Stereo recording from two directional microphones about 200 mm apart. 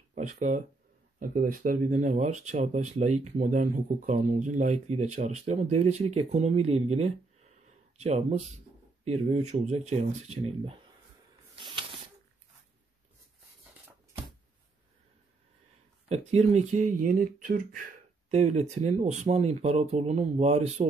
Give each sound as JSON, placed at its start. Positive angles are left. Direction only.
{"t": 0.1, "sound": "speech", "side_deg": -35}
{"t": 11.5, "sound": "snake", "side_deg": -25}
{"t": 16.1, "sound": "speech", "side_deg": -35}